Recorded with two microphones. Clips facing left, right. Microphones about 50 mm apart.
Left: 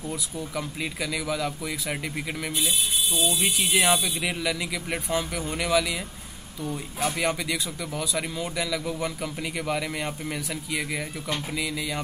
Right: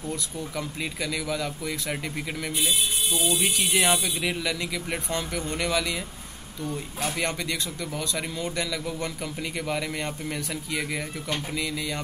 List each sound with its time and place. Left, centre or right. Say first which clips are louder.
0.1 s speech: even; centre
2.5 s speech: right 1 dB; right
3.3 s speech: even; centre